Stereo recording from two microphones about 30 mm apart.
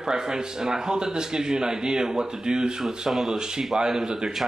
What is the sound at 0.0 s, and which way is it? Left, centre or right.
A man's voice, right.